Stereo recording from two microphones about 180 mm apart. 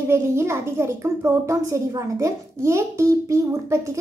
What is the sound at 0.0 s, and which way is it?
A child's voice, 15° right (ahead or behind).